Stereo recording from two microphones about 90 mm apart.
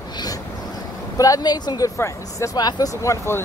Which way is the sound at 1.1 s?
40° left (ahead or behind).